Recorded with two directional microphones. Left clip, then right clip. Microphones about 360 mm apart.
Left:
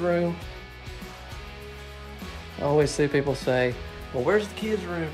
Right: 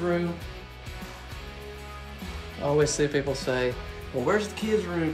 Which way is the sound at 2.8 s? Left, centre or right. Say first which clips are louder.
Left 1 dB; centre.